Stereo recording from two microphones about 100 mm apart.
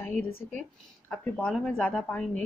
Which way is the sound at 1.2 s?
10° left (ahead or behind).